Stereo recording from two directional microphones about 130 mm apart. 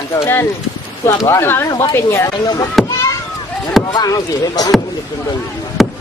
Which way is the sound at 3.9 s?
30° left (ahead or behind).